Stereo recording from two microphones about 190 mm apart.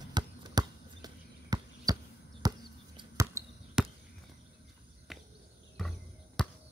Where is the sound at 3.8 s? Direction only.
5° right (ahead or behind).